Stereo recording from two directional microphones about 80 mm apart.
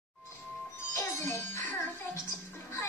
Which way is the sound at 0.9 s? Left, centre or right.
Left.